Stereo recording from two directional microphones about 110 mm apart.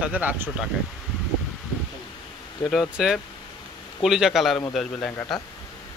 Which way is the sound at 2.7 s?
5° right (ahead or behind).